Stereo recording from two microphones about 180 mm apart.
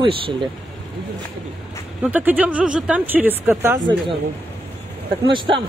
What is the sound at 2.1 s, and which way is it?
Speech, 10° right (ahead or behind).